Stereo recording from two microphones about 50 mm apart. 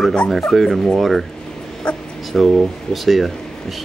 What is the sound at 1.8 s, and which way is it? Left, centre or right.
Dog, left.